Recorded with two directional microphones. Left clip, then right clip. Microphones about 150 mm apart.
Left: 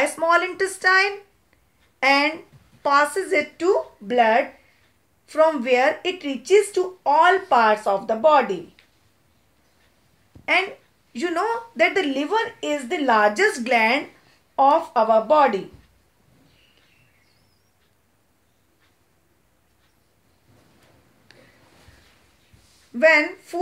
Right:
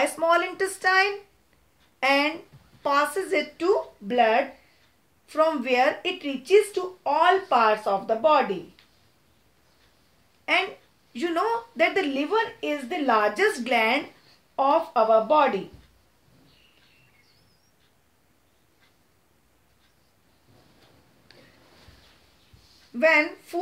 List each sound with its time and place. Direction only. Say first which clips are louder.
0.0 s a woman's voice: left 3 dB; 30° left (ahead or behind)
11.1 s a woman's voice: left 2 dB; 35° left (ahead or behind)
21.3 s a sound: left 2 dB; 50° left (ahead or behind)
22.9 s a woman's voice: left 4 dB; 35° left (ahead or behind)